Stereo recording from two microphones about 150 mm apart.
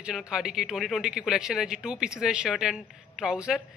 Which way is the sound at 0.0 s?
5° right (ahead or behind).